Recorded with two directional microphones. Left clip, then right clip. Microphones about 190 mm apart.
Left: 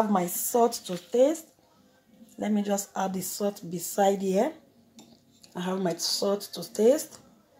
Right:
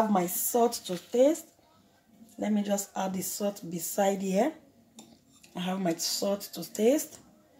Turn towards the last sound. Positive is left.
turn(degrees=10)  # may be behind; listen again after turning